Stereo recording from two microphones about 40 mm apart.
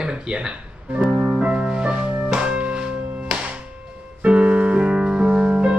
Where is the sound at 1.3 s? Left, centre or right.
Right.